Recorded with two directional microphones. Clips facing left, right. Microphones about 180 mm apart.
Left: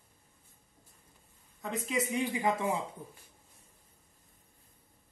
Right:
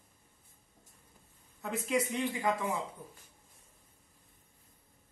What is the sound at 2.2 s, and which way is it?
Speech, 20° left (ahead or behind).